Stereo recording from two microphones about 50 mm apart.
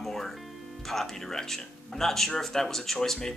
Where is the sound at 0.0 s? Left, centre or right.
Centre.